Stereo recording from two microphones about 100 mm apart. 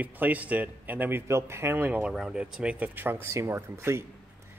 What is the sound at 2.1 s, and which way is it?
Speech, 5° right (ahead or behind).